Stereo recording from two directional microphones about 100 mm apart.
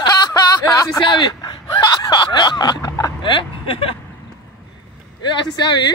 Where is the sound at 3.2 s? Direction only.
60° left (ahead or behind).